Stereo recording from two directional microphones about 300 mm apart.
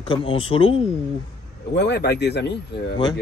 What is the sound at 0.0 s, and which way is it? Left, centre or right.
Speech, centre.